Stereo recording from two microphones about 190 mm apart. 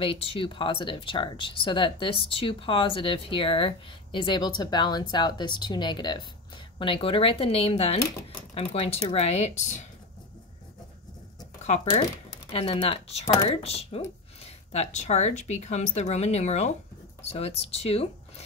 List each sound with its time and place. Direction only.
0.0 s speech: 30° left (ahead or behind)
11.6 s speech: 35° left (ahead or behind)